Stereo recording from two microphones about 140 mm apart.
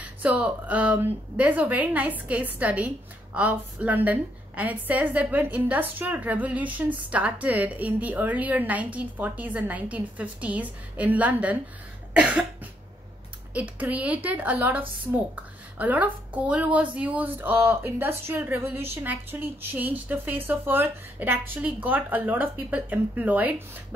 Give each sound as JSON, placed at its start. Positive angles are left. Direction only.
{"t": 0.0, "sound": "a woman's voice", "side_deg": -10}
{"t": 12.1, "sound": "cough", "side_deg": -10}
{"t": 13.5, "sound": "a woman's voice", "side_deg": -10}